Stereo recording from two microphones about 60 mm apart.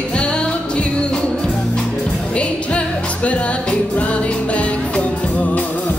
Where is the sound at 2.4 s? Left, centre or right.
Left.